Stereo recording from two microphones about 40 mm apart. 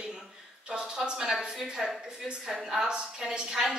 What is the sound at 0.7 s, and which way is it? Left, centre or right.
Speech, centre.